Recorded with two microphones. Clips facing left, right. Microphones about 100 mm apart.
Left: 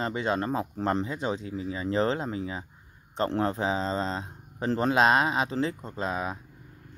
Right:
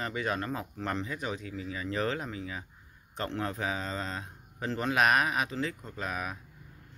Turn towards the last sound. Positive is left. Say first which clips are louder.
# left 5 dB
turn(degrees=25)  # may be behind; listen again after turning